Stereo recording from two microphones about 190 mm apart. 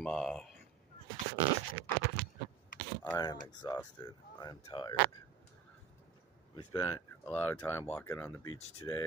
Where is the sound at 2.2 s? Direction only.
10° left (ahead or behind).